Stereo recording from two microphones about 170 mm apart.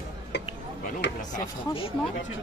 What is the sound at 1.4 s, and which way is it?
Speech, 30° left (ahead or behind).